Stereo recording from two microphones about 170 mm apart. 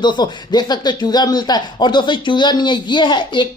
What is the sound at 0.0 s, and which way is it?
Speech, 25° left (ahead or behind).